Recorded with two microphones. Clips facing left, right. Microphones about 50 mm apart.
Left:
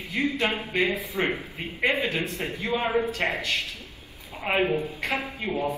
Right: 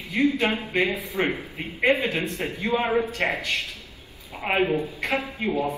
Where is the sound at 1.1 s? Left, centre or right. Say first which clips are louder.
Right 1 dB; centre.